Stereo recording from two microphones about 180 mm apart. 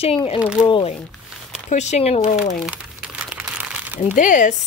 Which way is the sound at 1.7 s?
40° left (ahead or behind).